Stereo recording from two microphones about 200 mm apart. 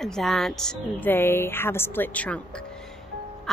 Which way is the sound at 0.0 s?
Centre (ahead or behind).